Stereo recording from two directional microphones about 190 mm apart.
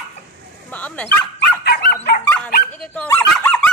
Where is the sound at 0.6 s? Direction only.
10° left (ahead or behind).